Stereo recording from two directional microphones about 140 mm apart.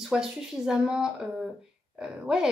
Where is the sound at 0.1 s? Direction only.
5° right (ahead or behind).